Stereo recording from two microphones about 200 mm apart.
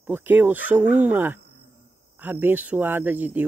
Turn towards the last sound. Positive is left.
turn(degrees=-10)  # may be behind; listen again after turning